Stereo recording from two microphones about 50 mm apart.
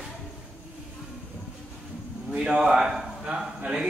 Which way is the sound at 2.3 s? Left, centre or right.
Centre.